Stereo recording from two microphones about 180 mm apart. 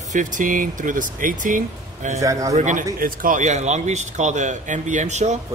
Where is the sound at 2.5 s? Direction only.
45° right (ahead or behind).